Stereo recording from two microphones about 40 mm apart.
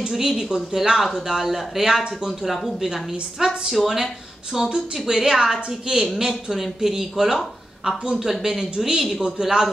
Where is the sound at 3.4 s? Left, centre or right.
Centre.